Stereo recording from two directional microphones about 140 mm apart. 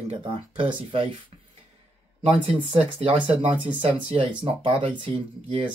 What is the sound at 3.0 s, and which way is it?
Speech, 45° right (ahead or behind).